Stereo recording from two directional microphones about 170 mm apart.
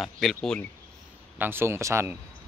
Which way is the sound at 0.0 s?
Centre (ahead or behind).